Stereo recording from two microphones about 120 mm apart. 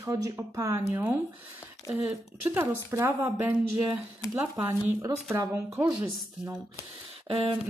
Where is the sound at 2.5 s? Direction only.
20° right (ahead or behind).